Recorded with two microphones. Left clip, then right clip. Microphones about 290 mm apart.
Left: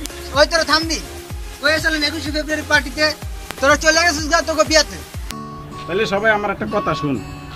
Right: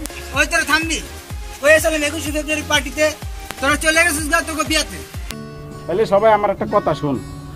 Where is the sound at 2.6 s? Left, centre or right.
Centre.